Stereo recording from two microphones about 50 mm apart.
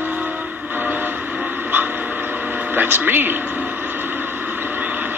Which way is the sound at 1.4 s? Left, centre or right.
Right.